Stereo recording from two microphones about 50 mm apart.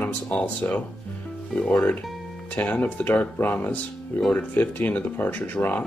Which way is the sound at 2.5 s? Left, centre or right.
Left.